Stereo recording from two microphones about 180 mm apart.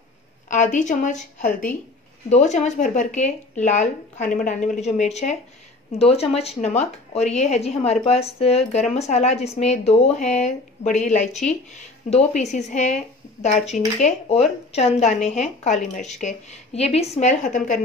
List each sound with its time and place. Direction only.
0.5 s a woman's voice: 45° left (ahead or behind)